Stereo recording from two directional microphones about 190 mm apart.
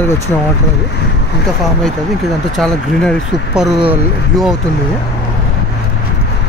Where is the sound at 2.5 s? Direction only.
5° left (ahead or behind).